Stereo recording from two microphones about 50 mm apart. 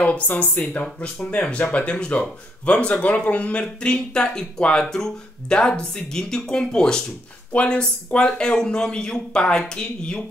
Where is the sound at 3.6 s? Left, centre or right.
Centre.